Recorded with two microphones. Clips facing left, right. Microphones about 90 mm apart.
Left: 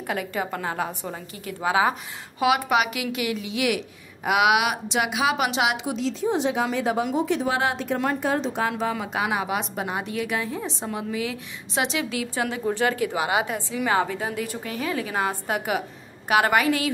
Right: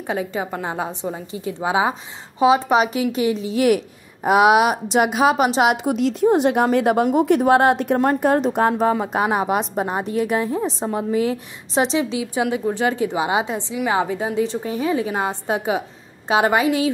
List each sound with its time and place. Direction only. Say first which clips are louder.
0.0 s a woman's voice: right 4 dB; 20° right (ahead or behind)
12.2 s a woman's voice: right 5 dB; 15° right (ahead or behind)